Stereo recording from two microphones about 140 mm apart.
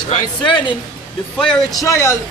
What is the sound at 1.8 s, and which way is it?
Speech, 20° left (ahead or behind).